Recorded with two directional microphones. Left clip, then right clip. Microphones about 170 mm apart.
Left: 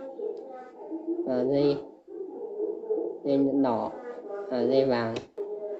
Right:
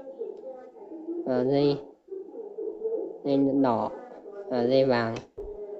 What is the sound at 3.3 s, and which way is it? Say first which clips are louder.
Speech: right 1 dB; 30° right (ahead or behind).